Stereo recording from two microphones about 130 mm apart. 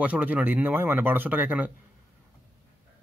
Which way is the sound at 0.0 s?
10° right (ahead or behind).